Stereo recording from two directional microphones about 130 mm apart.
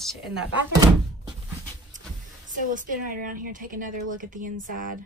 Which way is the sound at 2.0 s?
80° right.